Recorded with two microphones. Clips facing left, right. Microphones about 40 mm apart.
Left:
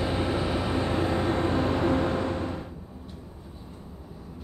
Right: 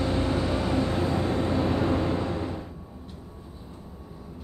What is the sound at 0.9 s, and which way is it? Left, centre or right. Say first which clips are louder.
Vehicle: left 1 dB; left.